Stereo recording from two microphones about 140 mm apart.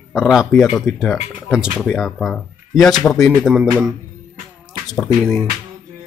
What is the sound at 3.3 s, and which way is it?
Music, 10° right (ahead or behind).